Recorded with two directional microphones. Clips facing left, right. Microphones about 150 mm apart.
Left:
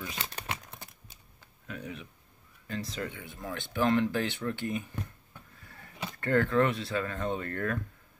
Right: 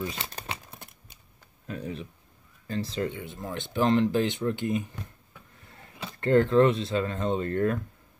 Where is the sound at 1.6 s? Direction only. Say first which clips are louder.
Right 5 dB; 30° right (ahead or behind).